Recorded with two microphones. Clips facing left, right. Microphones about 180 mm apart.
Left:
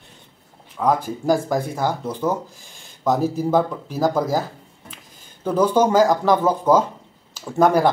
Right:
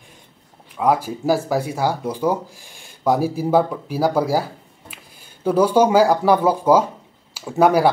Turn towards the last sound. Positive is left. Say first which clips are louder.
# right 1 dB
turn(degrees=-10)  # may be behind; listen again after turning